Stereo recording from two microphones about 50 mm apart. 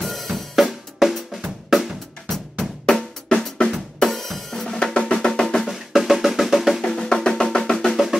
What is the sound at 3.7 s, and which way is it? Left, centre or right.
Drum, centre.